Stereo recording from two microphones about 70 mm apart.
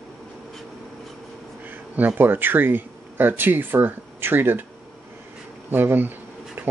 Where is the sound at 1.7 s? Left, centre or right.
Right.